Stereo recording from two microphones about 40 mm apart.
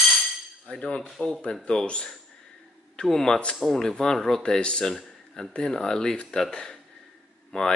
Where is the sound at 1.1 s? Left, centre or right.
Centre.